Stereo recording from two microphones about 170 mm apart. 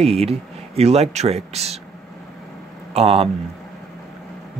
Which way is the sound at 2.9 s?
35° right (ahead or behind).